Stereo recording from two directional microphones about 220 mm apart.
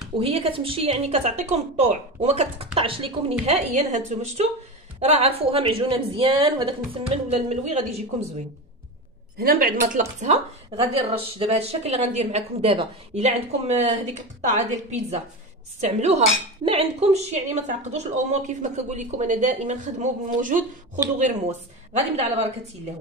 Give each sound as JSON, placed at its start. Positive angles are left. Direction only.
{"t": 0.2, "sound": "a woman's voice", "side_deg": -25}
{"t": 9.4, "sound": "a woman's voice", "side_deg": -40}